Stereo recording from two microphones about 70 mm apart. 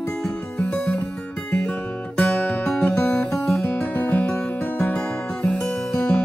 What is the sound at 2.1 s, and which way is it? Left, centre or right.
Music, centre.